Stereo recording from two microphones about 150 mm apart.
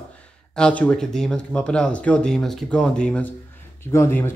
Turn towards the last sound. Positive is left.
turn(degrees=15)  # may be behind; listen again after turning